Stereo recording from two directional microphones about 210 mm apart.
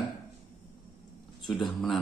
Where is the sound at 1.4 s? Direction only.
Centre (ahead or behind).